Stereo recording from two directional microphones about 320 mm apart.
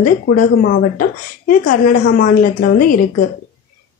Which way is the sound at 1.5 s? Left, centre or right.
Left.